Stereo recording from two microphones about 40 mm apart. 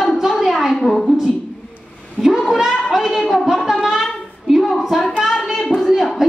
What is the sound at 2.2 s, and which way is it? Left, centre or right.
Meow, centre.